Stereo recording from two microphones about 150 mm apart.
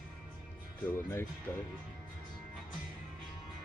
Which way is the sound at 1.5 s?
20° left (ahead or behind).